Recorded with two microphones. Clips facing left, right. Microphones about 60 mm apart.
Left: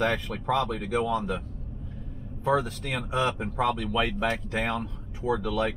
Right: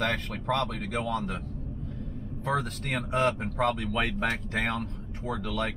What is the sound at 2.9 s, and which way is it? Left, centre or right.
Speech, right.